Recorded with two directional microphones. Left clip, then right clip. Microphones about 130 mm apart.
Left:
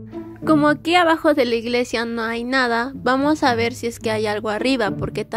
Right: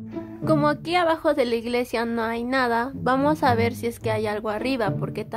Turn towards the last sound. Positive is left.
turn(degrees=30)  # may be behind; listen again after turning